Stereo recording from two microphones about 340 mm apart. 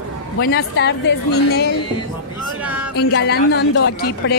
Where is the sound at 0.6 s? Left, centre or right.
Left.